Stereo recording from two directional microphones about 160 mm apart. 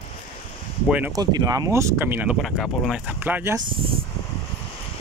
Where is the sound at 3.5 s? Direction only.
30° right (ahead or behind).